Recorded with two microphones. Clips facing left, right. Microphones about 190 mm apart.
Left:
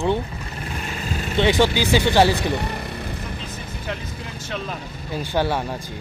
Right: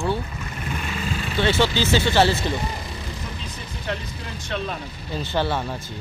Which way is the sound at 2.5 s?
65° left (ahead or behind).